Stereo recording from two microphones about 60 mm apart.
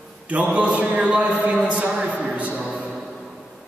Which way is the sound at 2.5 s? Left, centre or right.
Centre.